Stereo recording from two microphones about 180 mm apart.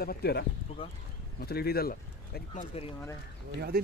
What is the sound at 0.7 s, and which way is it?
Speech, 30° left (ahead or behind).